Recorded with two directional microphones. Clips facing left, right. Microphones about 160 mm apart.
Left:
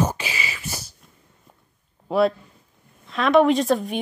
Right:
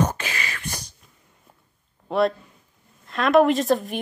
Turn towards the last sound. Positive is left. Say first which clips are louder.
# left 1 dB
turn(degrees=0)  # may be behind; listen again after turning